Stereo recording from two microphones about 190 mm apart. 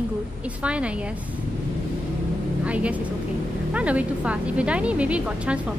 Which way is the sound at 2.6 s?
5° right (ahead or behind).